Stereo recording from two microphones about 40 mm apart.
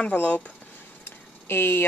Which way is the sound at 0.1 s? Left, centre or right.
Left.